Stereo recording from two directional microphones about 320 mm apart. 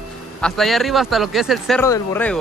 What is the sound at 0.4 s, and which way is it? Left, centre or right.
Speech, centre.